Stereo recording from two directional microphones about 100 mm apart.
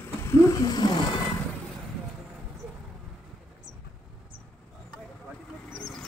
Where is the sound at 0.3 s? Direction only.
35° left (ahead or behind).